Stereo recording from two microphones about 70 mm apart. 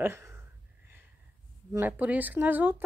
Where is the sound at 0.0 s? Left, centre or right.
Right.